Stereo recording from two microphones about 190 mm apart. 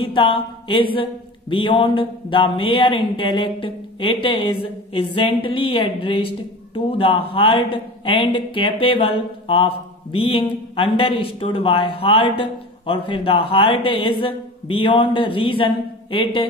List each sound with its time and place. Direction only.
0.0 s speech: 30° left (ahead or behind)